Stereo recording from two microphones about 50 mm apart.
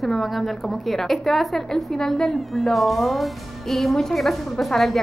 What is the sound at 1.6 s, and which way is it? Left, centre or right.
A woman's voice, centre.